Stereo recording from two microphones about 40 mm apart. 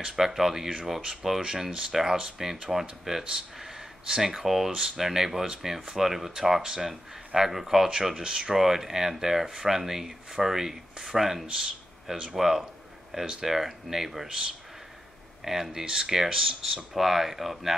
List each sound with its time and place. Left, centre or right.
0.0 s speech: centre
15.4 s speech: centre